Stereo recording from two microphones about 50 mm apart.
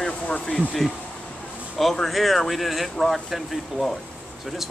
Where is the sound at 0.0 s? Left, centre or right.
Centre.